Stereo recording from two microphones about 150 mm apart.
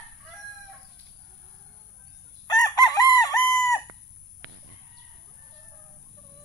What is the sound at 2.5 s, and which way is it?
Chicken, 25° left (ahead or behind).